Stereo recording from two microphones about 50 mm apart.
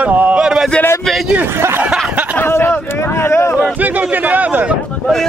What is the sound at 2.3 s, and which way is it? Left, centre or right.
Speech, left.